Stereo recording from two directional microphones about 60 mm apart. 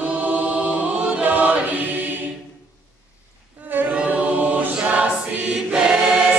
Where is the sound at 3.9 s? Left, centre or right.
Right.